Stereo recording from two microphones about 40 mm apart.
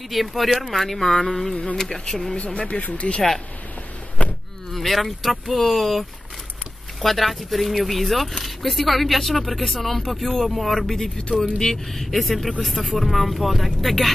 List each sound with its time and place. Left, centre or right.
0.1 s speech: centre
2.3 s speech: left
4.7 s speech: centre